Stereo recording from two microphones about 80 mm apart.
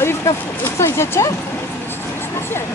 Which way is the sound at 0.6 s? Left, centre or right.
Left.